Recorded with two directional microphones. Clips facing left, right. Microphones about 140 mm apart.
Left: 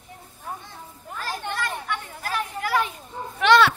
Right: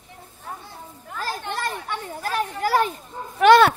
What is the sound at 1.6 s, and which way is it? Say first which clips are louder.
Children playing: right 1 dB; 35° right (ahead or behind).